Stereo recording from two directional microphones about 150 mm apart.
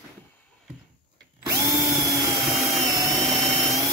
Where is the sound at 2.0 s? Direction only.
20° right (ahead or behind).